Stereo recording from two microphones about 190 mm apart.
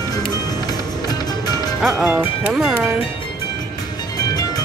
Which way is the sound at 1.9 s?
10° right (ahead or behind).